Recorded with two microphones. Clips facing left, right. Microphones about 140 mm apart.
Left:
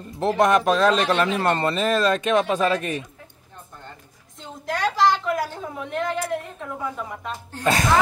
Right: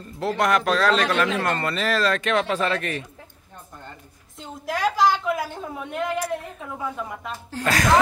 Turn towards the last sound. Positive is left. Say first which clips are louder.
# left 1 dB
turn(degrees=25)  # may be behind; listen again after turning